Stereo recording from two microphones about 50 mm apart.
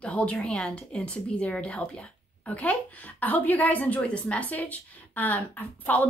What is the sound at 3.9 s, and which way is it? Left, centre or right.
Speech, left.